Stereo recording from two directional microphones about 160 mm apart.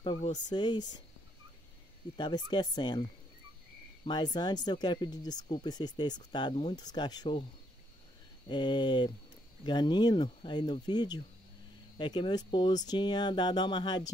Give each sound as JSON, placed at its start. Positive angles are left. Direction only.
{"t": 0.0, "sound": "speech", "side_deg": 30}
{"t": 2.1, "sound": "speech", "side_deg": 30}
{"t": 8.5, "sound": "speech", "side_deg": 30}